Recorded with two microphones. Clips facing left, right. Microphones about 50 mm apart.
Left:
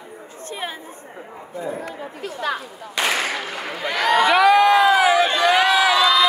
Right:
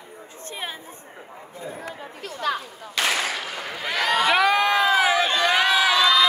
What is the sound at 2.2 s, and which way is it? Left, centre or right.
Speech, left.